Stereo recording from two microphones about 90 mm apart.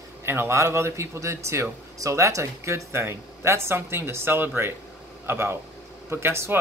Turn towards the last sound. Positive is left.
turn(degrees=-25)  # may be behind; listen again after turning